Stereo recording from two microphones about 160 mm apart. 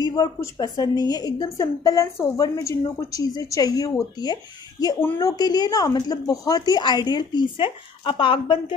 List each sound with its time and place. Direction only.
0.0 s a woman's voice: 25° left (ahead or behind)